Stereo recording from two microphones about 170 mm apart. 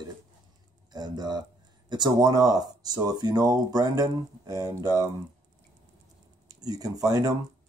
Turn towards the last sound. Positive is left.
turn(degrees=-20)  # may be behind; listen again after turning